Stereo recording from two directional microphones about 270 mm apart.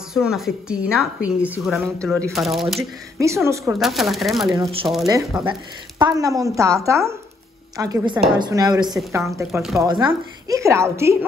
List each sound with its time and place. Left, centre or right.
0.1 s a woman's voice: centre
5.5 s speech: centre
9.2 s a woman's voice: centre
9.8 s speech: centre